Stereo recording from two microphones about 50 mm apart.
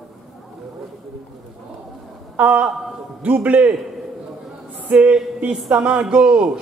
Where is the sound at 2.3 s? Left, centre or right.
Right.